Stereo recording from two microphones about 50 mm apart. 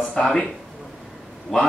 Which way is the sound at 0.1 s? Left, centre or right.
Centre.